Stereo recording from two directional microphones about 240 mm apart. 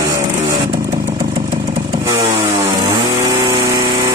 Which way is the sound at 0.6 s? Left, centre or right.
Centre.